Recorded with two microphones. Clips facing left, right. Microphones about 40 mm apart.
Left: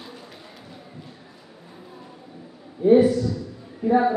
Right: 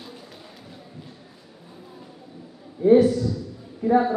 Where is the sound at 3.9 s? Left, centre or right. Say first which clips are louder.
Even; centre.